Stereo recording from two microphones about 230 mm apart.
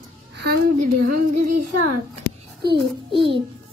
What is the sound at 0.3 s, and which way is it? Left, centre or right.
Speech, right.